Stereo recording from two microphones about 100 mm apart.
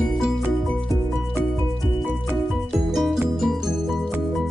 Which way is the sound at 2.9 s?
Centre (ahead or behind).